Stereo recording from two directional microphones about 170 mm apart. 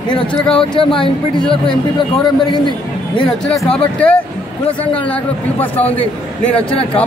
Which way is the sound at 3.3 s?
5° left (ahead or behind).